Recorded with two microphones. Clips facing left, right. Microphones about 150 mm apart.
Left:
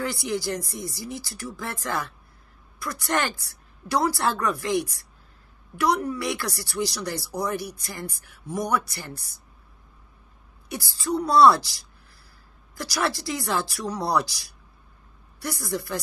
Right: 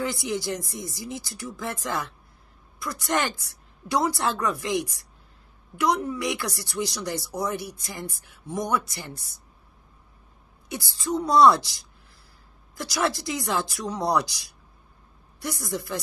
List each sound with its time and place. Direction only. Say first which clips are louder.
0.0 s speech: even; 20° right (ahead or behind)
6.0 s speech: even; 20° right (ahead or behind)
10.7 s speech: left 1 dB; 20° right (ahead or behind)